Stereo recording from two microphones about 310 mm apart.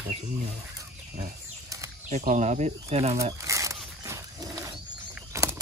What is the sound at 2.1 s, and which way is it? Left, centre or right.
Snake, right.